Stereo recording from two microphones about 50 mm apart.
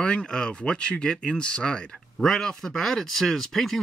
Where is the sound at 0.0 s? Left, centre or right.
Centre.